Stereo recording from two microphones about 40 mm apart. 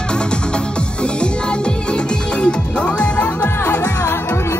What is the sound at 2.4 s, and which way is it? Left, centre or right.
Music, left.